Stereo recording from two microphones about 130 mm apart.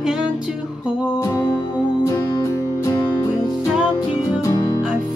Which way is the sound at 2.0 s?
25° left (ahead or behind).